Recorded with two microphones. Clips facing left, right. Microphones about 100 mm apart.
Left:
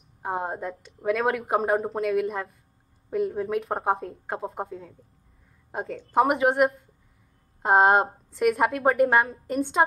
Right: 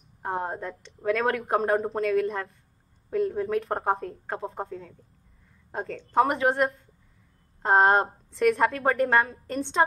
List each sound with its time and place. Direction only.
0.2 s a woman's voice: 5° left (ahead or behind)